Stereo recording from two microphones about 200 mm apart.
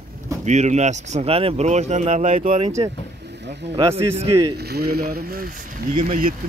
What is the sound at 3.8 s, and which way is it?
Speech, 15° right (ahead or behind).